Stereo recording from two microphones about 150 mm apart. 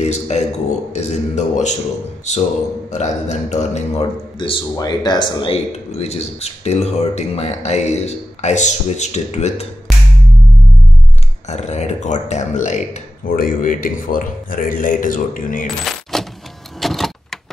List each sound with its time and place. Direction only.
0.0 s speech: 50° left (ahead or behind)
4.4 s speech: 30° left (ahead or behind); by 9.7 s 50° left (ahead or behind)
11.4 s speech: 50° left (ahead or behind); by 15.7 s 65° left (ahead or behind)
15.8 s coin: centre (ahead or behind)
16.8 s vehicle: centre (ahead or behind)